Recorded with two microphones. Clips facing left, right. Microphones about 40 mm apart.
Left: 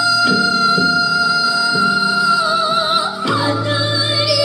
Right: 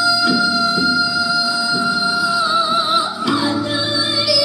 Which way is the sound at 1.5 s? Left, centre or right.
Left.